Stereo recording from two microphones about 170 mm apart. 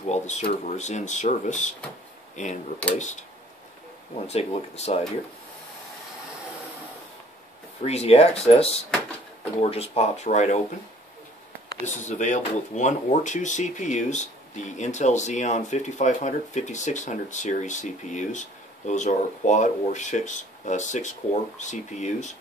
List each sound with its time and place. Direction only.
0.0 s speech: 45° left (ahead or behind)
4.3 s speech: 40° left (ahead or behind)
7.8 s speech: 40° left (ahead or behind)
11.8 s speech: 45° left (ahead or behind)